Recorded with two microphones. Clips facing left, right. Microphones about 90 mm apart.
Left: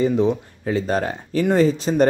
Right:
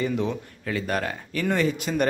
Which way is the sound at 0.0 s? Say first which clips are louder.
Left 8 dB; 30° left (ahead or behind).